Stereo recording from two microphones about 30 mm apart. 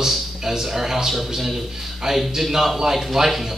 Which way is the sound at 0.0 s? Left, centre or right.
Centre.